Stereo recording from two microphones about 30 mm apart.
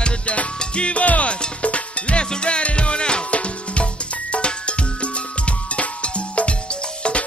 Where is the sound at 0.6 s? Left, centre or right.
Left.